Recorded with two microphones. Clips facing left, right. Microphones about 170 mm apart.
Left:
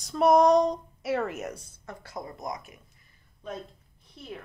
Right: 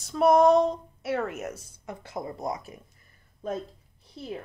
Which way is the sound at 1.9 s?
20° right (ahead or behind).